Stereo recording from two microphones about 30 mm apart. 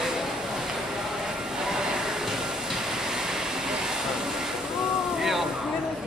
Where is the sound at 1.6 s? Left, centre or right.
Centre.